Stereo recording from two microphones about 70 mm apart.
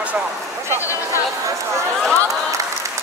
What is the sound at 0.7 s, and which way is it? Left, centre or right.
Speech, left.